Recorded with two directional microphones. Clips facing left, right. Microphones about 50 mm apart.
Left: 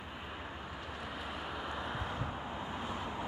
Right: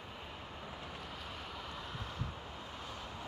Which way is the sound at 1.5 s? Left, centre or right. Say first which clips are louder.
Left 6 dB; left.